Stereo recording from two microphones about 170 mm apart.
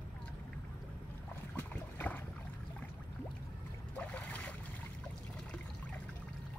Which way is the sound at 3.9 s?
10° left (ahead or behind).